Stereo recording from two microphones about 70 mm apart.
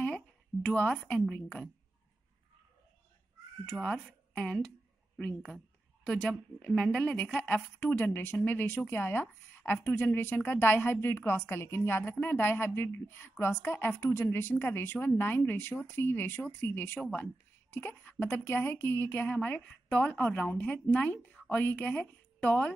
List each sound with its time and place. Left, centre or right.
0.0 s a sound: centre
1.3 s a woman's voice: centre
3.7 s speech: centre
6.0 s a woman's voice: centre